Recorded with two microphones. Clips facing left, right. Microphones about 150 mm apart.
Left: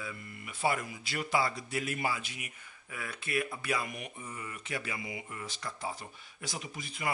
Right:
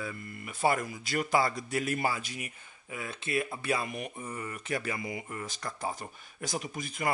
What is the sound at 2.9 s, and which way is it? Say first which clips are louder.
Speech: right 2 dB; 25° right (ahead or behind).